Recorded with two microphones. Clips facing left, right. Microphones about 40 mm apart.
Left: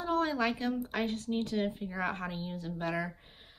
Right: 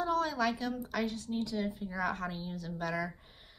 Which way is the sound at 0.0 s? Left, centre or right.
Left.